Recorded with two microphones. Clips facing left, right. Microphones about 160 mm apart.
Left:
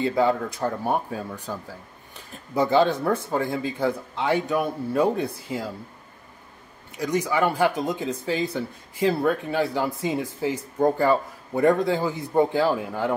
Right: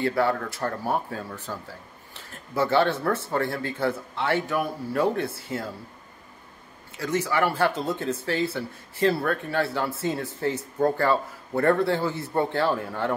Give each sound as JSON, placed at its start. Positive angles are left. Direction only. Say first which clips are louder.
{"t": 0.0, "sound": "speech", "louder": "left 2 dB", "side_deg": 20}
{"t": 7.0, "sound": "speech", "louder": "left 2 dB", "side_deg": 15}